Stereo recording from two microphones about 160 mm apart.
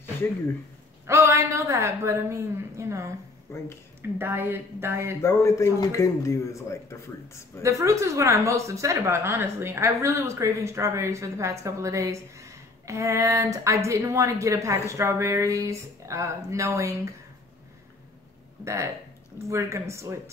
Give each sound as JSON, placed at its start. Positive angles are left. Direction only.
{"t": 1.0, "sound": "a woman's voice", "side_deg": -15}
{"t": 3.5, "sound": "a man's voice", "side_deg": 15}
{"t": 4.2, "sound": "a woman's voice", "side_deg": -15}
{"t": 5.2, "sound": "a man's voice", "side_deg": 20}
{"t": 7.6, "sound": "speech", "side_deg": -20}
{"t": 18.6, "sound": "a woman's voice", "side_deg": -20}